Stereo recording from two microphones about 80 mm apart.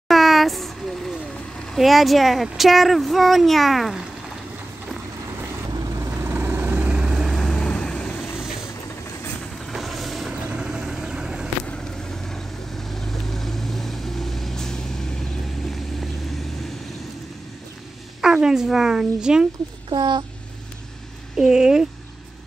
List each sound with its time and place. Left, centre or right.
0.1 s a sound: centre
1.7 s speech: centre
6.1 s vehicle: right
7.2 s vehicle: centre
9.7 s vehicle: centre
11.6 s vehicle: centre
18.2 s speech: centre
19.9 s speech: right
21.4 s speech: centre